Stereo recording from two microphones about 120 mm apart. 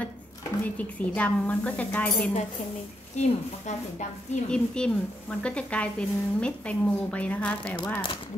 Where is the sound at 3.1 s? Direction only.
70° left (ahead or behind).